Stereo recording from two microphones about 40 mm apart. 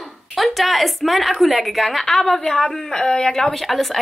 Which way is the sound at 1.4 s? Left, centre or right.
Centre.